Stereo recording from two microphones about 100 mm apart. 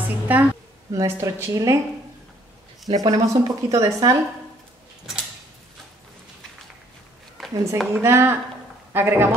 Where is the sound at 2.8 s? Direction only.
40° right (ahead or behind).